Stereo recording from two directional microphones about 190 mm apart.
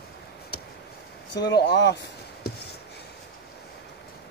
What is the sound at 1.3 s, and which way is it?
Speech, 60° left (ahead or behind).